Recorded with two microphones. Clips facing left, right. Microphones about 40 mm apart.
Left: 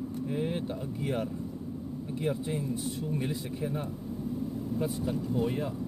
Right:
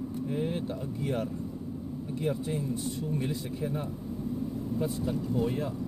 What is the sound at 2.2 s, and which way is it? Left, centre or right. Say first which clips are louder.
Speech: even; centre.